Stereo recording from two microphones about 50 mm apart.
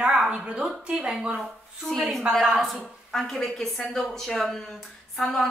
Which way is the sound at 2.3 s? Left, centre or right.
Centre.